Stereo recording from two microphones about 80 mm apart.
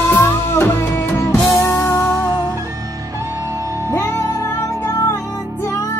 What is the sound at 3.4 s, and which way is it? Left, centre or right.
Music, right.